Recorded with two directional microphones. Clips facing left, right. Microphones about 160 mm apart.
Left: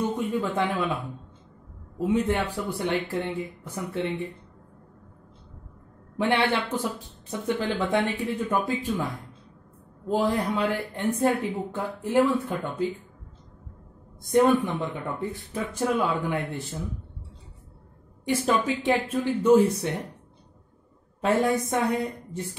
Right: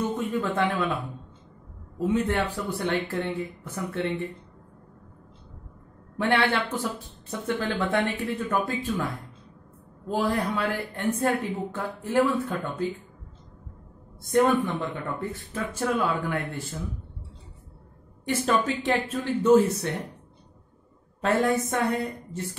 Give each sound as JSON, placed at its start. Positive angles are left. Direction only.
{"t": 0.0, "sound": "a sound", "side_deg": 10}
{"t": 2.0, "sound": "speech", "side_deg": 15}
{"t": 6.1, "sound": "speech", "side_deg": 15}
{"t": 10.0, "sound": "speech", "side_deg": 15}
{"t": 14.2, "sound": "speech", "side_deg": 15}
{"t": 18.2, "sound": "speech", "side_deg": 15}
{"t": 21.2, "sound": "speech", "side_deg": 10}